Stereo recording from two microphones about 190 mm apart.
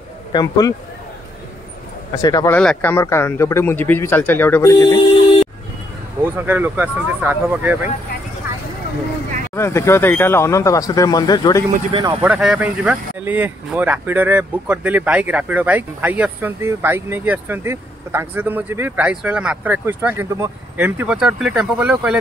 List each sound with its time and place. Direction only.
0.3 s speech: 20° left (ahead or behind)
2.2 s speech: 20° left (ahead or behind)
2.5 s speech: 5° left (ahead or behind)
6.2 s speech: 10° right (ahead or behind)
9.6 s speech: 15° left (ahead or behind)
11.9 s speech: 20° right (ahead or behind)
12.2 s speech: 5° right (ahead or behind)